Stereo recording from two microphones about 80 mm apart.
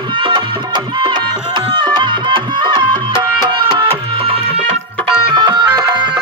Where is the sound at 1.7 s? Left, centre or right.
Right.